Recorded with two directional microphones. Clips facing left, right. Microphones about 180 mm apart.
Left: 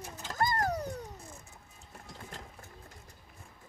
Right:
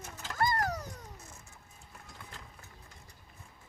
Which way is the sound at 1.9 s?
45° left (ahead or behind).